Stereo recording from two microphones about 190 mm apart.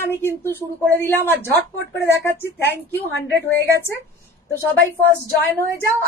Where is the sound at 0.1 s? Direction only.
10° left (ahead or behind).